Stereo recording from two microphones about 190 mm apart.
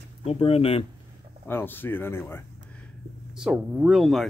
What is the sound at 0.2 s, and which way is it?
Speech, 30° left (ahead or behind).